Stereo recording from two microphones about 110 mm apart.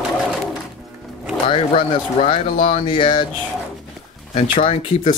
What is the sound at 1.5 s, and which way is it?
Speech, 55° left (ahead or behind).